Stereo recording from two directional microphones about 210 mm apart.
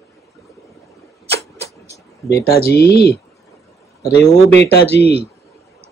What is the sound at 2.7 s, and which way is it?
Speech, 50° left (ahead or behind).